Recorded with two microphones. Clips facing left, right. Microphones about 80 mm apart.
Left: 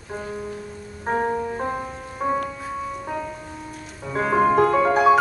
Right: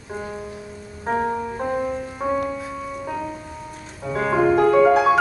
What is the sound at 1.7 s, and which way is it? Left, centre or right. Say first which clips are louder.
Music: right 6 dB; centre.